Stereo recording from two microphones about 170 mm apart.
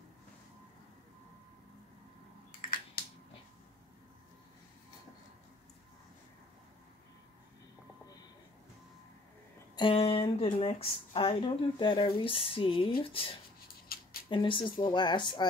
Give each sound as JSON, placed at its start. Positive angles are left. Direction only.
{"t": 9.8, "sound": "speech", "side_deg": 30}
{"t": 13.9, "sound": "scissors", "side_deg": 60}
{"t": 14.3, "sound": "speech", "side_deg": 30}